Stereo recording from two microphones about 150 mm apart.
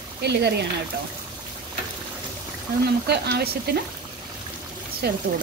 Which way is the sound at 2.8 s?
90° right.